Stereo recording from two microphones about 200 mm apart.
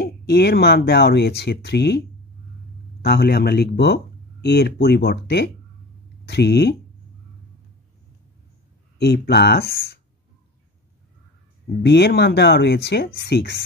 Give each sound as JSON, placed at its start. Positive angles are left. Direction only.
{"t": 0.0, "sound": "speech", "side_deg": 50}
{"t": 8.9, "sound": "speech", "side_deg": 55}
{"t": 11.8, "sound": "speech", "side_deg": 55}